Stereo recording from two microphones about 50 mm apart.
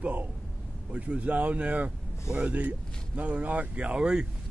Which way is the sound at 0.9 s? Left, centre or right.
Right.